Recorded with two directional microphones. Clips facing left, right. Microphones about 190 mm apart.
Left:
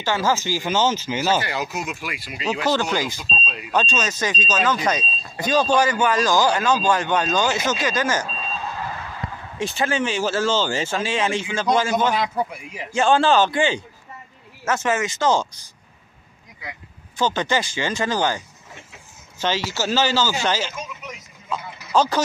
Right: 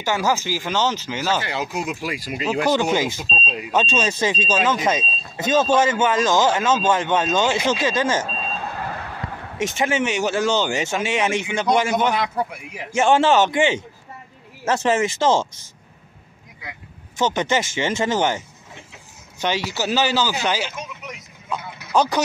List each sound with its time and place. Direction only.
0.0 s speech: 15° right (ahead or behind)
0.6 s speech: 5° left (ahead or behind)
1.5 s speech: 30° right (ahead or behind)
2.7 s speech: 20° right (ahead or behind)
8.6 s basketball bounce: 55° right (ahead or behind)
9.6 s speech: 20° right (ahead or behind)
12.1 s speech: centre (ahead or behind)
12.9 s speech: 20° right (ahead or behind)
17.2 s speech: 20° right (ahead or behind)
19.4 s speech: 15° right (ahead or behind)